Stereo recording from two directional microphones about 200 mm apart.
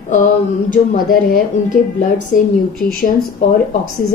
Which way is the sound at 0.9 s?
40° left (ahead or behind).